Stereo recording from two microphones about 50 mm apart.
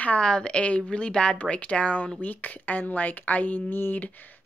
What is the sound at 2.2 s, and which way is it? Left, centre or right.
A woman's voice, left.